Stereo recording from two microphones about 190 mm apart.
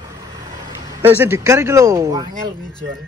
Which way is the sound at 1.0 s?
10° right (ahead or behind).